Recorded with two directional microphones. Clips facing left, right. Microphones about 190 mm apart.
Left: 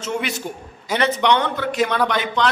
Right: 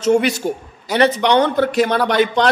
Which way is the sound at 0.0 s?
40° right (ahead or behind).